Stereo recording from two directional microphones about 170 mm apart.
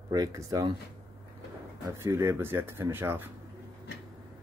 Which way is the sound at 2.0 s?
15° right (ahead or behind).